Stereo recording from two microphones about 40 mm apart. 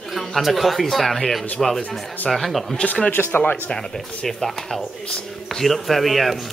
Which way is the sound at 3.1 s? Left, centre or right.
Left.